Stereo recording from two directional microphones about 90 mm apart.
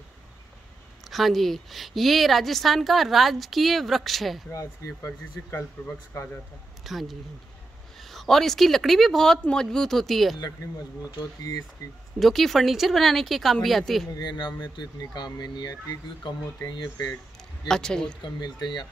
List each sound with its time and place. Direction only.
1.0 s a woman's voice: centre (ahead or behind)
4.5 s speech: 35° left (ahead or behind)
5.8 s speech: 25° left (ahead or behind)
6.1 s speech: 35° left (ahead or behind)
6.8 s a woman's voice: centre (ahead or behind)
11.8 s speech: 45° left (ahead or behind)
12.2 s a woman's voice: centre (ahead or behind)
14.2 s speech: 55° left (ahead or behind)
17.6 s speech: 10° left (ahead or behind)
18.2 s speech: 55° left (ahead or behind)